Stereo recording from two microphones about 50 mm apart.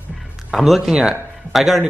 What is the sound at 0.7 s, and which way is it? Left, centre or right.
Speech, centre.